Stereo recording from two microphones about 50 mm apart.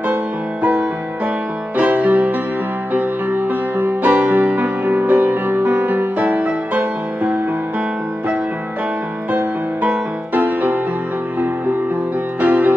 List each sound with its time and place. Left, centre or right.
0.1 s music: right
9.8 s music: right
12.4 s music: right